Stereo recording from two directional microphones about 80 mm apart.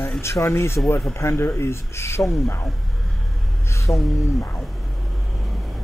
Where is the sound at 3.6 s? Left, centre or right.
Left.